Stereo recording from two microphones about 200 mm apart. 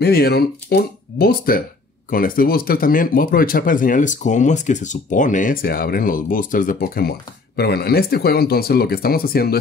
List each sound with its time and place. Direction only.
0.0 s speech: 50° left (ahead or behind)